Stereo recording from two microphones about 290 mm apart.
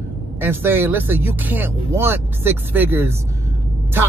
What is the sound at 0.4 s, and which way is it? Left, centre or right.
Speech, centre.